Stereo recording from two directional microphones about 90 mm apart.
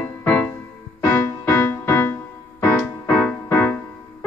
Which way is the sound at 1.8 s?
25° left (ahead or behind).